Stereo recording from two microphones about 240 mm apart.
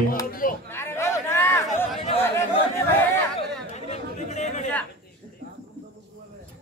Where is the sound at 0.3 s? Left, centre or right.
Left.